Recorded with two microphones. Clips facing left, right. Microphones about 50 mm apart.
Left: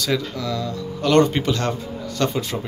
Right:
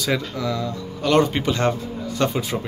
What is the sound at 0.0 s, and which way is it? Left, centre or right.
Speech, centre.